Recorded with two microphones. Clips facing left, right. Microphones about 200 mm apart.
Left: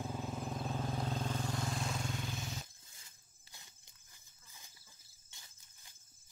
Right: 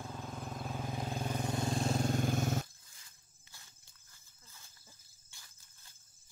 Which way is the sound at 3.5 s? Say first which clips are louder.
Left 1 dB; 20° left (ahead or behind).